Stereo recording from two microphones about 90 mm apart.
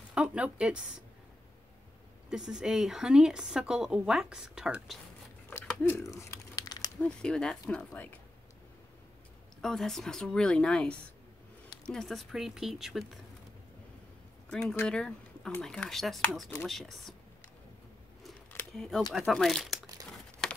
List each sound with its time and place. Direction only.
0.1 s a woman's voice: 10° right (ahead or behind)
2.2 s a woman's voice: 10° right (ahead or behind)
5.8 s speech: 20° left (ahead or behind)
6.0 s crumpling: 35° left (ahead or behind)
7.0 s speech: 10° left (ahead or behind)
9.6 s speech: 5° left (ahead or behind)
14.5 s speech: 10° left (ahead or behind)
18.7 s speech: 5° left (ahead or behind)